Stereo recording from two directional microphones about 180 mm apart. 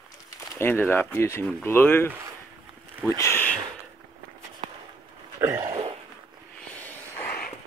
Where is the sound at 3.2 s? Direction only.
10° left (ahead or behind).